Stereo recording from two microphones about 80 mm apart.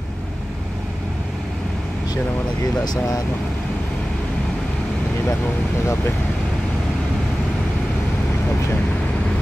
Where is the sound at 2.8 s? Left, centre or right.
Left.